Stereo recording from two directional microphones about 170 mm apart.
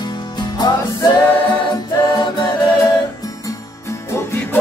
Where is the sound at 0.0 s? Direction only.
25° left (ahead or behind).